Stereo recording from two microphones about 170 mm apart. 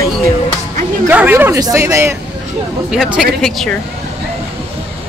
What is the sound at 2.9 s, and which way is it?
Speech, 5° right (ahead or behind).